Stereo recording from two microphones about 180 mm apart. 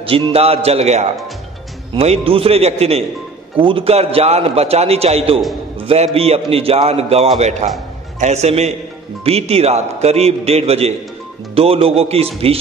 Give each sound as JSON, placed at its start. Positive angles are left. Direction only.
{"t": 0.0, "sound": "a man's voice", "side_deg": -30}
{"t": 5.8, "sound": "a sound", "side_deg": -30}
{"t": 6.1, "sound": "a man's voice", "side_deg": -35}